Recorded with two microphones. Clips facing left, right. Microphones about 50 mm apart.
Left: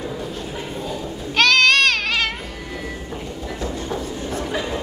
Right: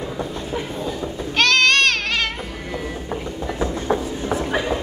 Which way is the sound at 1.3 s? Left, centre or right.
Centre.